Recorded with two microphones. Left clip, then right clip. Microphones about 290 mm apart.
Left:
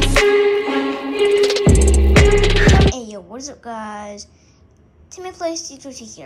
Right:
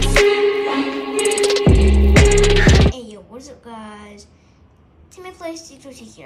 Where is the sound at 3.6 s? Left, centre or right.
Left.